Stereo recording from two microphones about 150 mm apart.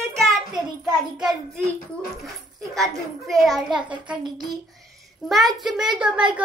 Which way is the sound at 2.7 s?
Centre (ahead or behind).